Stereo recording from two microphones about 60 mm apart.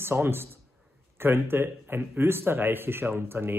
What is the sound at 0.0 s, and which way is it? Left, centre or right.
A man's voice, right.